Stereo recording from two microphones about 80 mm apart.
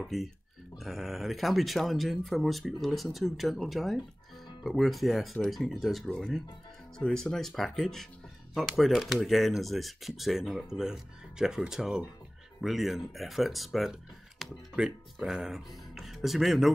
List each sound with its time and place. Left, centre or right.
0.0 s speech: centre
6.0 s speech: centre